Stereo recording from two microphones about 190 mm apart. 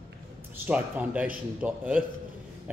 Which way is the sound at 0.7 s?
10° right (ahead or behind).